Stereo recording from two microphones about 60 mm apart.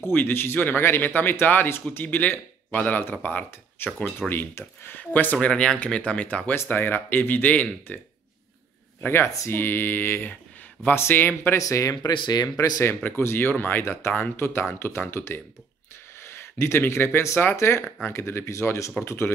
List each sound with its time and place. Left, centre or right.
0.1 s speech: left
5.5 s speech: centre
5.8 s speech: left
9.0 s speech: left
11.5 s speech: left
13.4 s speech: left